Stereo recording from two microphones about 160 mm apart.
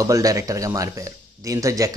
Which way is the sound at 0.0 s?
20° right (ahead or behind).